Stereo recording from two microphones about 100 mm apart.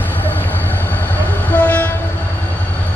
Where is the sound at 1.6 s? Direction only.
15° left (ahead or behind).